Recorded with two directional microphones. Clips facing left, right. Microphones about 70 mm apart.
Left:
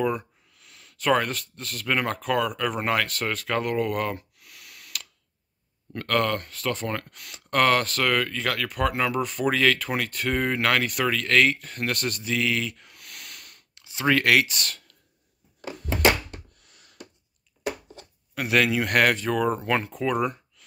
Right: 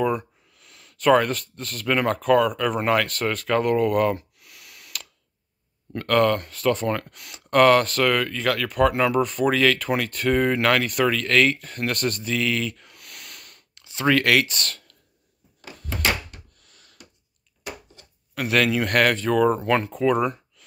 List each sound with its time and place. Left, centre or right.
0.0 s speech: centre
15.7 s a sound: centre
18.3 s speech: centre